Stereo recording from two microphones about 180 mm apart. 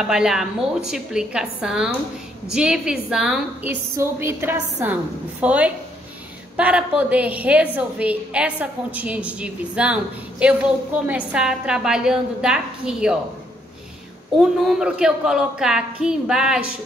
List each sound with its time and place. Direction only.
0.0 s a woman's voice: 5° right (ahead or behind)
14.4 s a woman's voice: 5° right (ahead or behind)